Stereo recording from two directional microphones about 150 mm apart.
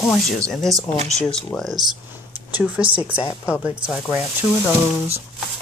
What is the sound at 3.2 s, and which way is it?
Speech, 20° left (ahead or behind).